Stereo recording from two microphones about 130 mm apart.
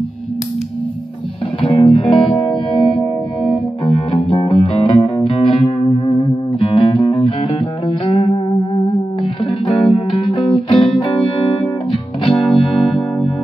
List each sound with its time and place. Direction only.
1.6 s music: 40° left (ahead or behind)
3.8 s music: 40° left (ahead or behind)